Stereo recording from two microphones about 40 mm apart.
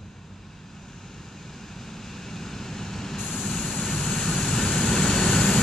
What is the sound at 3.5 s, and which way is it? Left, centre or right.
Vehicle, centre.